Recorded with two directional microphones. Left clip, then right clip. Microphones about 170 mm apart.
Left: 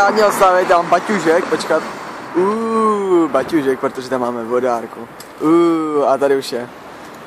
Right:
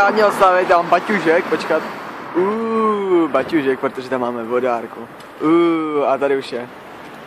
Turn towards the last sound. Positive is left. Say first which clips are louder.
# left 3 dB
turn(degrees=25)  # may be behind; listen again after turning